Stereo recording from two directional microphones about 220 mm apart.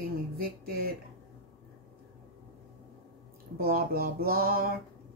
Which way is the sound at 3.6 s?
45° right (ahead or behind).